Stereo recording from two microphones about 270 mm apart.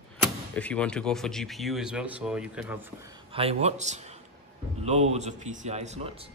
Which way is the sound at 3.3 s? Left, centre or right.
Right.